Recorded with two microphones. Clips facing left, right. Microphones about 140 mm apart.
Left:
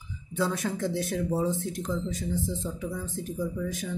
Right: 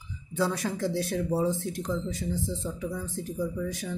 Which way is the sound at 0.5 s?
Centre (ahead or behind).